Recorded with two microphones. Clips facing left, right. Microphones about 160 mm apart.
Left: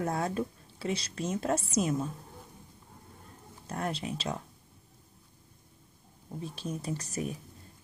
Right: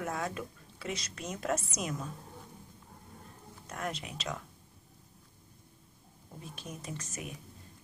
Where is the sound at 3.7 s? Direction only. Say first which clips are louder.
Left 5 dB; 30° left (ahead or behind).